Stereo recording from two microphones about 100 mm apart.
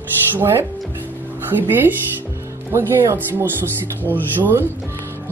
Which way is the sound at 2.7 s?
25° right (ahead or behind).